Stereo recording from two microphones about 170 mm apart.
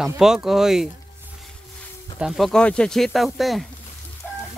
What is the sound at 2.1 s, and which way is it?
Speech, centre (ahead or behind).